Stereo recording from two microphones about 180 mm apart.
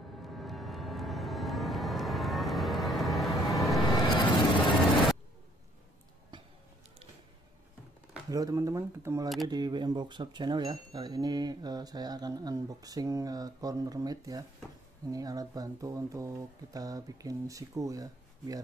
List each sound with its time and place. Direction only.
0.4 s vehicle: centre (ahead or behind)
3.8 s music: 25° left (ahead or behind)
8.3 s speech: 20° right (ahead or behind)